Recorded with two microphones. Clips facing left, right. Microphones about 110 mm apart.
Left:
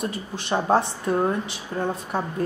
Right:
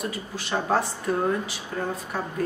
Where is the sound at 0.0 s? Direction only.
25° left (ahead or behind).